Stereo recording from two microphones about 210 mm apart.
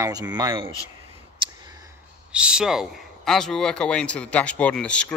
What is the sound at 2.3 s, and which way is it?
Speech, 5° right (ahead or behind).